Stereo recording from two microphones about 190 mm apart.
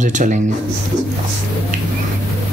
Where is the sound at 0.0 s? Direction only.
40° right (ahead or behind).